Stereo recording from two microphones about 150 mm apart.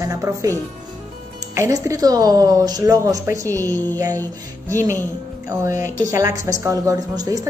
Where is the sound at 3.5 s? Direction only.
15° left (ahead or behind).